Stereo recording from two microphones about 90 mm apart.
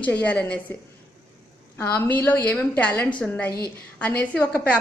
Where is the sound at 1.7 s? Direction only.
25° left (ahead or behind).